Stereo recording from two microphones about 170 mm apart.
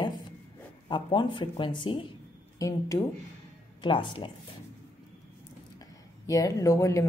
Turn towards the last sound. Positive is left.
turn(degrees=20)  # may be behind; listen again after turning